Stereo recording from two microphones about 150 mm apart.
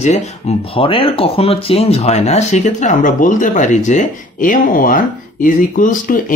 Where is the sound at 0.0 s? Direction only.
50° left (ahead or behind).